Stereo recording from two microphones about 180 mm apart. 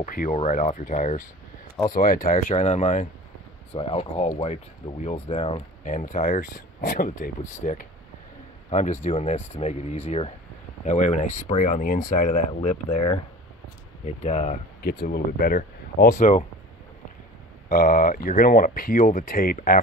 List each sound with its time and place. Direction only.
0.0 s speech: 50° left (ahead or behind)
3.7 s speech: 30° left (ahead or behind)
8.6 s speech: 40° left (ahead or behind)
14.8 s speech: 60° left (ahead or behind)
17.6 s speech: 55° left (ahead or behind)